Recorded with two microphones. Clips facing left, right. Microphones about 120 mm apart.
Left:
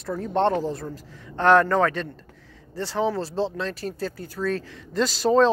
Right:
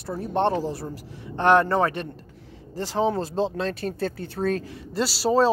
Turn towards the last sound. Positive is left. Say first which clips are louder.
# left 2 dB
turn(degrees=-5)  # may be behind; listen again after turning